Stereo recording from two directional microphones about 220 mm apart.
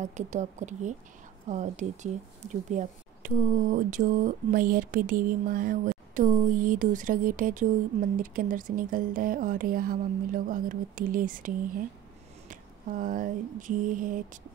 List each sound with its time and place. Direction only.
0.0 s speech: 35° right (ahead or behind)
12.4 s mantra: 40° right (ahead or behind)